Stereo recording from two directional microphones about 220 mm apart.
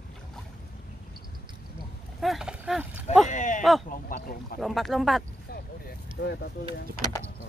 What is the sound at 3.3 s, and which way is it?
Speech, 35° left (ahead or behind).